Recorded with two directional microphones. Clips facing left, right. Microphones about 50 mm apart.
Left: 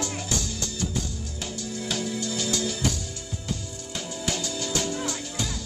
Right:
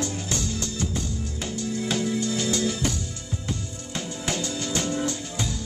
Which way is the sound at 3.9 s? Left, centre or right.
Right.